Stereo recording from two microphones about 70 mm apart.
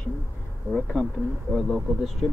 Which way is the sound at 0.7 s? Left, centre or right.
Centre.